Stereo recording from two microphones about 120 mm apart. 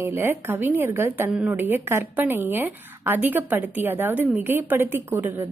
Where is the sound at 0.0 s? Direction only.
20° right (ahead or behind).